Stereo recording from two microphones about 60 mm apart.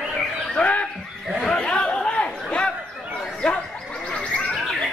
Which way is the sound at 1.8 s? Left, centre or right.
Centre.